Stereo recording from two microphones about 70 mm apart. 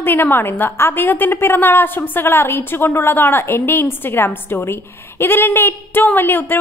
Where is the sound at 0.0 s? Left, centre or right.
Left.